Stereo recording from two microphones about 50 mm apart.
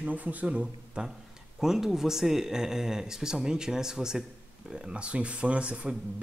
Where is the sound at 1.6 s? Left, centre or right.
Centre.